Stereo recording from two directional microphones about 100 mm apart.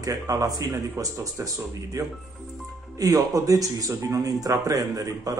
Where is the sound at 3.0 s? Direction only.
35° right (ahead or behind).